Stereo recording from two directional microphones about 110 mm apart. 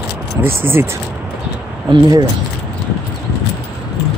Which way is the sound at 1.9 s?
35° right (ahead or behind).